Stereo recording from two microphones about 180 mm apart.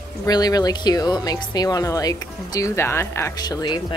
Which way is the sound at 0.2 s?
20° left (ahead or behind).